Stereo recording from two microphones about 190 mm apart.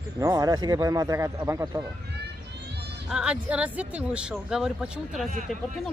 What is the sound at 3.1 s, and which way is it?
Speech, 5° right (ahead or behind).